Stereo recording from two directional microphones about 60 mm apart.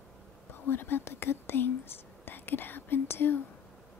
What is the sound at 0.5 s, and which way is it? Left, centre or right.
Speech, left.